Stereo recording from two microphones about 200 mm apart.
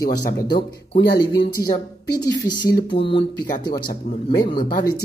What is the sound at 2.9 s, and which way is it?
Speech, 25° left (ahead or behind).